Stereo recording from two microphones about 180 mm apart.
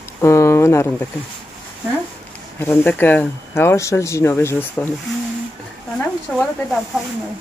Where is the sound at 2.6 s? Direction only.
10° left (ahead or behind).